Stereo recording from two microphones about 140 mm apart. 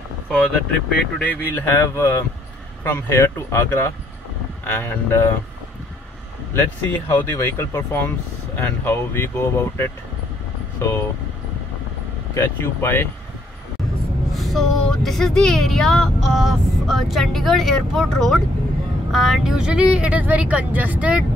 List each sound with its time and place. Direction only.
0.3 s speech: 5° left (ahead or behind)
6.5 s speech: 20° left (ahead or behind)
12.4 s speech: 15° left (ahead or behind)
14.3 s speech: centre (ahead or behind)